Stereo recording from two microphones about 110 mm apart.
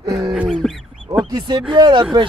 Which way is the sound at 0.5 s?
Centre (ahead or behind).